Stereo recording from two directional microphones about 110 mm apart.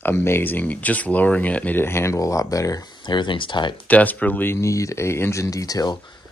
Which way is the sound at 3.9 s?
15° left (ahead or behind).